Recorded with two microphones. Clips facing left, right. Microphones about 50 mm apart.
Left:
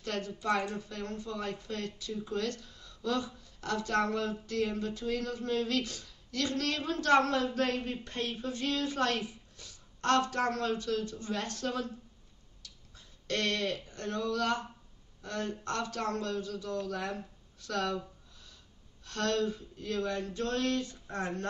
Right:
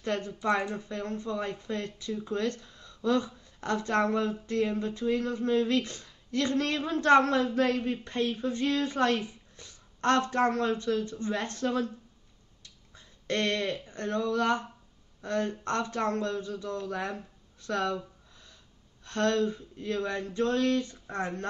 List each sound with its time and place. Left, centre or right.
0.0 s a woman's voice: right
12.9 s speech: right
17.6 s a sound: right
19.0 s speech: right